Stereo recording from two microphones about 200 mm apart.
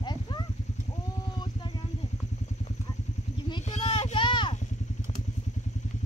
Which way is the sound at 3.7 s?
35° left (ahead or behind).